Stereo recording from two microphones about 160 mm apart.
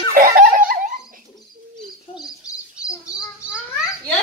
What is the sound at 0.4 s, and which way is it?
Giggle, 60° right (ahead or behind).